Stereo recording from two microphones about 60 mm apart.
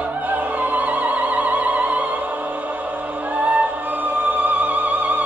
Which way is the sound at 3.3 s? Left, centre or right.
Right.